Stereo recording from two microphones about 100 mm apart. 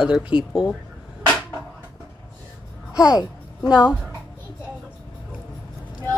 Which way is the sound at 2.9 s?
35° left (ahead or behind).